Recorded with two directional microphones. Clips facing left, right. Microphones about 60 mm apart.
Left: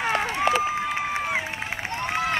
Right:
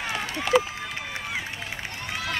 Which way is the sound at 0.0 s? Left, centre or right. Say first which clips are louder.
Left 7 dB; left.